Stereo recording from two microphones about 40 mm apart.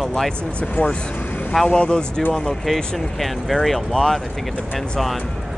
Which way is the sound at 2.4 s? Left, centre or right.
Centre.